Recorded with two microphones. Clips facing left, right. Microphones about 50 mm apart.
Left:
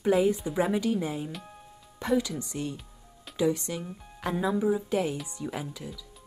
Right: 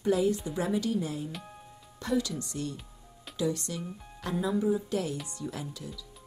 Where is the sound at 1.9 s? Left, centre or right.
Centre.